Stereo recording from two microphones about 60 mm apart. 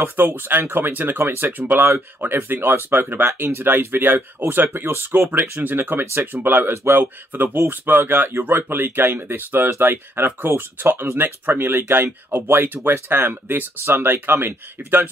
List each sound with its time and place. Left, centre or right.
0.0 s speech: right